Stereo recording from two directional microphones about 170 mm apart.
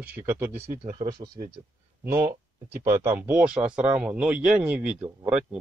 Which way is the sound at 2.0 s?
15° right (ahead or behind).